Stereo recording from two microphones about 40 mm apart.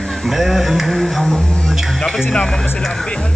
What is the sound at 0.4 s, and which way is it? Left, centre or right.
Speech, centre.